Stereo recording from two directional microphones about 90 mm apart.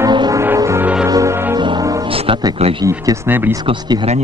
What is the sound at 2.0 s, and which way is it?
Music, 85° right.